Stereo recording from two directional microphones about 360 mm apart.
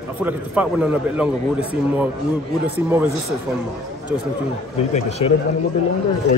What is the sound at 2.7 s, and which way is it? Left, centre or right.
Speech, centre.